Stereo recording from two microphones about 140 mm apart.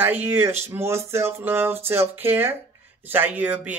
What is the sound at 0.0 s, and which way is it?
Speech, 15° right (ahead or behind).